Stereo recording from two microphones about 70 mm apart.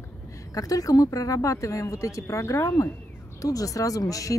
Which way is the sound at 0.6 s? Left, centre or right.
Left.